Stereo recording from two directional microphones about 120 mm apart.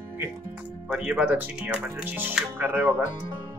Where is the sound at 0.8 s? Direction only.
10° right (ahead or behind).